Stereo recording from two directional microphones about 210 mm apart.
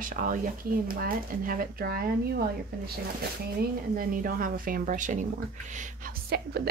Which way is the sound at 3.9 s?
40° right (ahead or behind).